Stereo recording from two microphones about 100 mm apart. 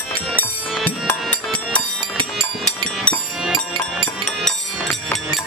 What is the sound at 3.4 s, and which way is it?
Music, 5° right (ahead or behind).